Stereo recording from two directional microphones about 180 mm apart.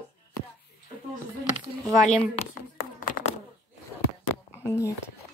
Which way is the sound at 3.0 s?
45° left (ahead or behind).